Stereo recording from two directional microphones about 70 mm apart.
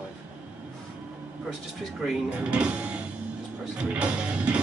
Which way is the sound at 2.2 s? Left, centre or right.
Centre.